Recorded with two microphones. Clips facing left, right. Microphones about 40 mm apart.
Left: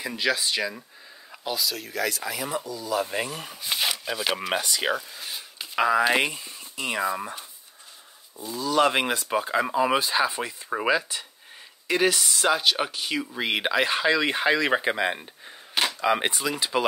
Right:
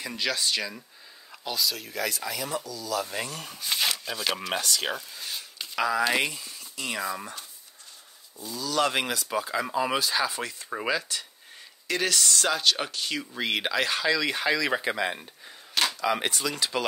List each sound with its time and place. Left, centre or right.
0.0 s speech: centre
2.3 s speech: centre
5.8 s speech: left
8.5 s speech: left
9.7 s speech: centre